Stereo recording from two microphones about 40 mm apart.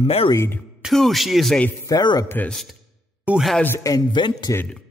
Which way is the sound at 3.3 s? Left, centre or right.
Right.